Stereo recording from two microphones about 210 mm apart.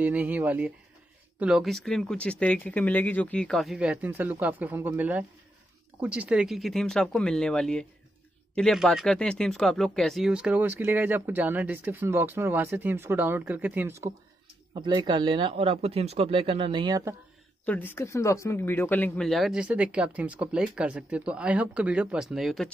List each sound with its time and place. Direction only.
0.0 s speech: 5° right (ahead or behind)
14.7 s speech: 20° right (ahead or behind)
17.6 s speech: 10° left (ahead or behind)